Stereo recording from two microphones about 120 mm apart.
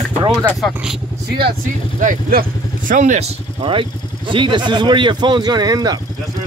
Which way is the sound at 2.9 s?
90° right.